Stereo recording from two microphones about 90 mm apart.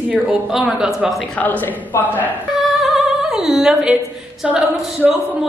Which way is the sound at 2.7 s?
5° right (ahead or behind).